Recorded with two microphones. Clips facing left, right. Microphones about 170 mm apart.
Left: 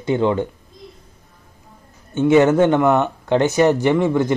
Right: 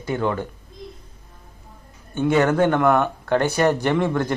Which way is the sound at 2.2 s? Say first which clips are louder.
Left 5 dB; 20° left (ahead or behind).